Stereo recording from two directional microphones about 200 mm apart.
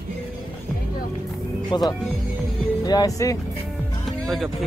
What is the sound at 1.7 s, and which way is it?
Speech, 20° left (ahead or behind).